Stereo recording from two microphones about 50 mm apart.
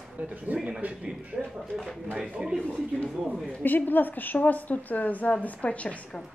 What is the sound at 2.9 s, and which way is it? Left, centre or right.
Speech, left.